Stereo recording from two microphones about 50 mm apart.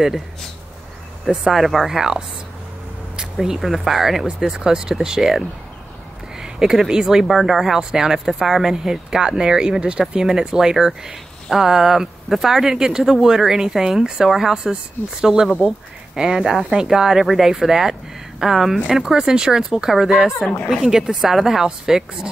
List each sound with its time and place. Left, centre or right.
1.2 s speech: centre
3.3 s speech: centre